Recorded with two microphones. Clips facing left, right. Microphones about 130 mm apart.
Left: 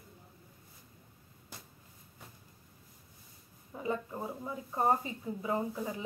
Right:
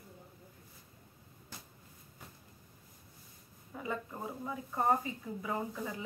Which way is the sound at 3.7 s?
20° left (ahead or behind).